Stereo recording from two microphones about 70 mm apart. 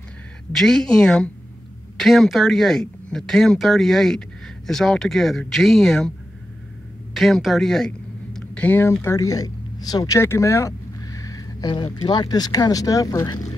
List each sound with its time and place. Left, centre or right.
0.5 s speech: centre
7.2 s a sound: centre
8.5 s speech: left
9.0 s speech: left
10.1 s a sound: left
11.6 s speech: left